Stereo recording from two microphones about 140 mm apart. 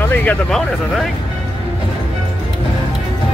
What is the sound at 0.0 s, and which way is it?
Speech, 15° left (ahead or behind).